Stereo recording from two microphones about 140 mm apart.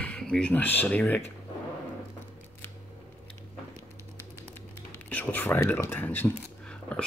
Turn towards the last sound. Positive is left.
turn(degrees=10)  # may be behind; listen again after turning